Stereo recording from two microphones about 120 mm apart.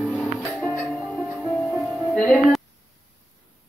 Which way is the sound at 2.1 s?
10° left (ahead or behind).